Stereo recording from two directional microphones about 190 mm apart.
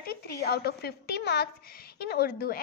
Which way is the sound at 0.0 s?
55° left (ahead or behind).